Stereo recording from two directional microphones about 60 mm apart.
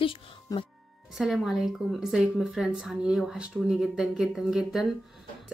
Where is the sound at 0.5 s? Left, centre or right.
Left.